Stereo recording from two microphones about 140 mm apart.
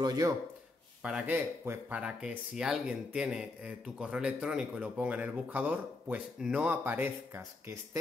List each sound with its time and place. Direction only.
0.0 s speech: 30° right (ahead or behind)
1.0 s speech: 10° right (ahead or behind)